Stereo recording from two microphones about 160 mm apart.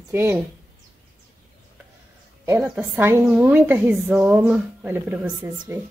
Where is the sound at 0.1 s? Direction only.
15° right (ahead or behind).